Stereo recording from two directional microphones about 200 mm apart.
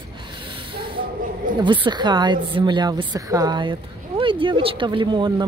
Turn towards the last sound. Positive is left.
turn(degrees=-25)  # may be behind; listen again after turning